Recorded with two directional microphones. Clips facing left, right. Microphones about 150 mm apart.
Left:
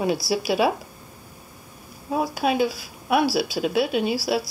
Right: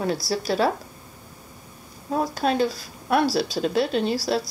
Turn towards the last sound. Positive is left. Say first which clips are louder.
# even
turn(degrees=5)  # may be behind; listen again after turning